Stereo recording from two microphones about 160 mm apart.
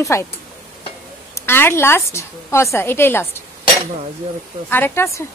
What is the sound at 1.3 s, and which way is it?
Speech, 15° left (ahead or behind).